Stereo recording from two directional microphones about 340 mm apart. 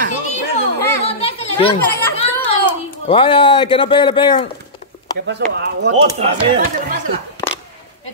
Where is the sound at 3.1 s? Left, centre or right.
Centre.